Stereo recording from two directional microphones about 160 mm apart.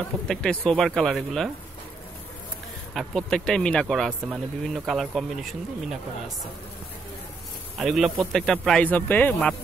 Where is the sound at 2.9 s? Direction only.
5° left (ahead or behind).